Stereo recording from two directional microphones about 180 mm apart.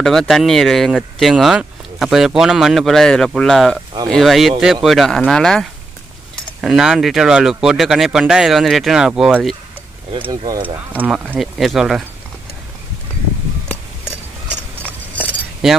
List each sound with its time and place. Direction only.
0.0 s speech: centre (ahead or behind)
10.1 s speech: 25° right (ahead or behind)
10.6 s speech: 10° right (ahead or behind)